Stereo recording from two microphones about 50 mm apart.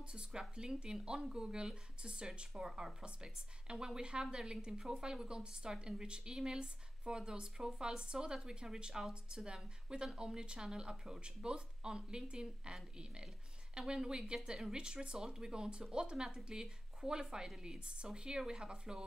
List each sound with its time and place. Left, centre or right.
0.0 s a woman's voice: right